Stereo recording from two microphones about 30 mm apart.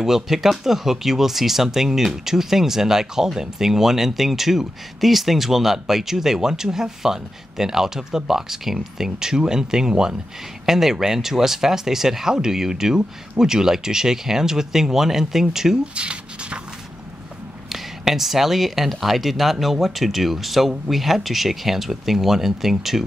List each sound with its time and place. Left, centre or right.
0.0 s speech: centre
9.3 s speech: right
15.8 s speech: right
17.6 s speech: centre